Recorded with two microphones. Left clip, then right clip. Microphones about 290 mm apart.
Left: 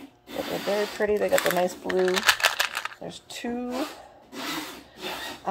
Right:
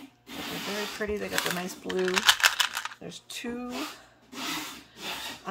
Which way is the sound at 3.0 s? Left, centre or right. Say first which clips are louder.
Left 3 dB; centre.